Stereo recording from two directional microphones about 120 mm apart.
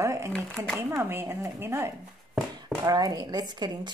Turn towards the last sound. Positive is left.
turn(degrees=-35)  # may be behind; listen again after turning